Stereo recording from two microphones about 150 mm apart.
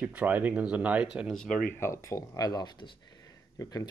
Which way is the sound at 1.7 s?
20° left (ahead or behind).